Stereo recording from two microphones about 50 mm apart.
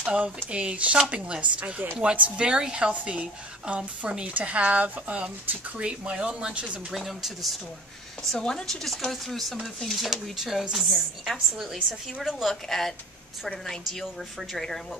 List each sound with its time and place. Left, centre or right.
0.0 s a woman's voice: right
6.9 s speech: centre
8.2 s speech: centre
10.3 s speech: centre
14.5 s speech: centre